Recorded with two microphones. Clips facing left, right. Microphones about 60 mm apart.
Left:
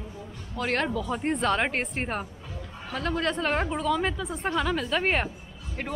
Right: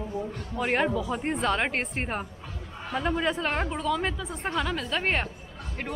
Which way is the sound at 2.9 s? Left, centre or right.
Centre.